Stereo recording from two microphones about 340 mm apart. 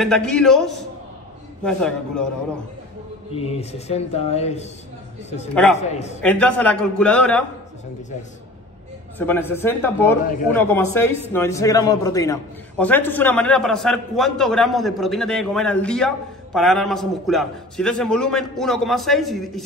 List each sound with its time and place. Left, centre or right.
0.0 s speech: centre
3.3 s speech: centre
5.5 s speech: centre
5.8 s speech: centre
6.2 s speech: centre
9.2 s speech: centre